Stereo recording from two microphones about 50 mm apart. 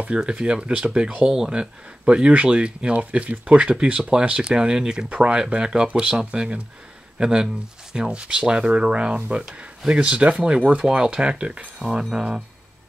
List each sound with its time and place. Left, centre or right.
0.2 s speech: centre
10.0 s speech: right